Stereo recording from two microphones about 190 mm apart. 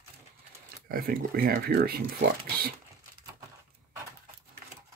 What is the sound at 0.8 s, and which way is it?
Speech, 50° right (ahead or behind).